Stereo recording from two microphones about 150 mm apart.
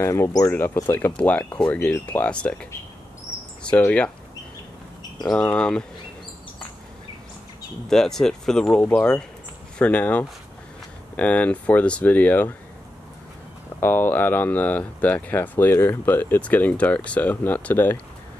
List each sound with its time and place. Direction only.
0.0 s speech: 20° left (ahead or behind)
3.7 s speech: 10° left (ahead or behind)
5.3 s speech: 5° left (ahead or behind)
7.9 s speech: 5° left (ahead or behind)
13.7 s speech: 15° left (ahead or behind)